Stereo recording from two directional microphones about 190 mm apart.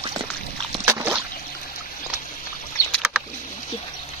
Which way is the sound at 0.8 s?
10° right (ahead or behind).